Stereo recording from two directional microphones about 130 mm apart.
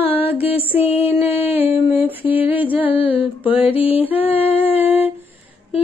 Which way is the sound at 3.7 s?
45° left (ahead or behind).